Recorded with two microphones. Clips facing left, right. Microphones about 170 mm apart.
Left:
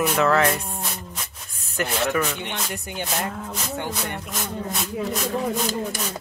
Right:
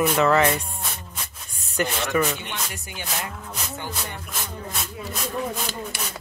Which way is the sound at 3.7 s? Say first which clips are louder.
Left 6 dB; 65° left (ahead or behind).